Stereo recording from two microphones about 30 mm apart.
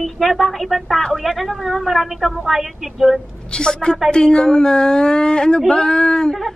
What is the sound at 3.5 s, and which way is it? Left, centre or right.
A woman's voice, left.